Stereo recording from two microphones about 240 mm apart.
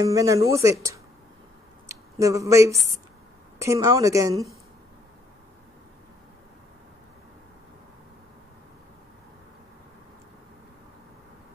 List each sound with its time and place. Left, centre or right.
0.0 s a woman's voice: centre
1.9 s a woman's voice: centre